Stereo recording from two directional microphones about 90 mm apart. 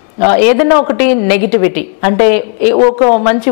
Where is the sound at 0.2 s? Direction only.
15° left (ahead or behind).